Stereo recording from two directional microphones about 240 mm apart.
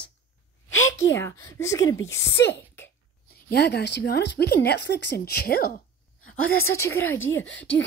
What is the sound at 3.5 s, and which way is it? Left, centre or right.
Speech, left.